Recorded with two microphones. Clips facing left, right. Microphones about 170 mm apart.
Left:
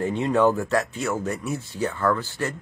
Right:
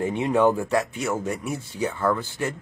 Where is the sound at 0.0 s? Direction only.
15° right (ahead or behind).